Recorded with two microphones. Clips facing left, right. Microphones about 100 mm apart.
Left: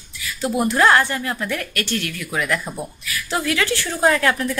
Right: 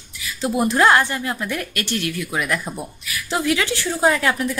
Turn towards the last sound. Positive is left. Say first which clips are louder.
# left 1 dB
turn(degrees=-15)  # may be behind; listen again after turning